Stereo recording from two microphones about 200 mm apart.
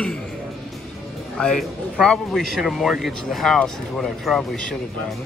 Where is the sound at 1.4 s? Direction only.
5° left (ahead or behind).